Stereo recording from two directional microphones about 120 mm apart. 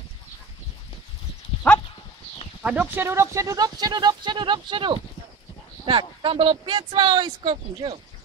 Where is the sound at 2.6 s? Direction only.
10° right (ahead or behind); by 7.5 s 40° right (ahead or behind).